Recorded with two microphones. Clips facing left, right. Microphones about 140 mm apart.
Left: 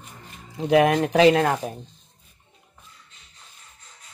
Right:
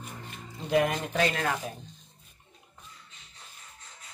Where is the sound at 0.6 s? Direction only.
90° left.